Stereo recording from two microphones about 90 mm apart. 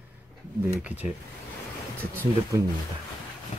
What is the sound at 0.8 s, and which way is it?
Speech, 15° right (ahead or behind).